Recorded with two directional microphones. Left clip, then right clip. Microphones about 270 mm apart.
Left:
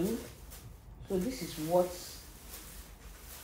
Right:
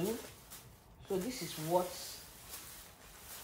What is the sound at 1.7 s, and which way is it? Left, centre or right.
Speech, centre.